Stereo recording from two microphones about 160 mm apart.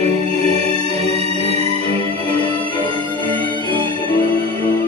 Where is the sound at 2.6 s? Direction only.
30° left (ahead or behind).